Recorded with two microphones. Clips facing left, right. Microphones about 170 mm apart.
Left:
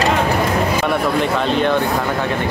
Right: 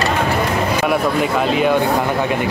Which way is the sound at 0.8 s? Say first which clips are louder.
Right 1 dB; 5° right (ahead or behind).